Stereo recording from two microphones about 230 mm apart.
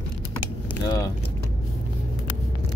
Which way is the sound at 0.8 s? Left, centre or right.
Centre.